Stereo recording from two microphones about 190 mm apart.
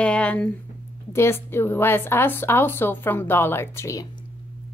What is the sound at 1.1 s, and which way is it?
A woman's voice, 15° left (ahead or behind).